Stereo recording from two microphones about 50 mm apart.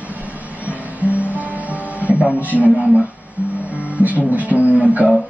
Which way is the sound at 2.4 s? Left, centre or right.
Right.